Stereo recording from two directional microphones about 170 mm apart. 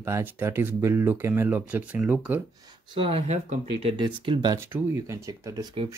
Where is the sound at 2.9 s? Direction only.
35° right (ahead or behind).